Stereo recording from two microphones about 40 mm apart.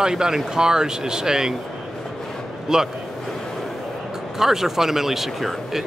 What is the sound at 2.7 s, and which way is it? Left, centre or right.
Speech, centre.